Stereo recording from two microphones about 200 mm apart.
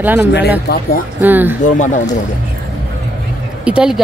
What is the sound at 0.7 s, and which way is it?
Speech, 45° left (ahead or behind).